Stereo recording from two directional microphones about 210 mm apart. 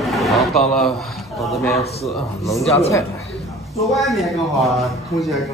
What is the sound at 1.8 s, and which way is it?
Speech, 30° left (ahead or behind).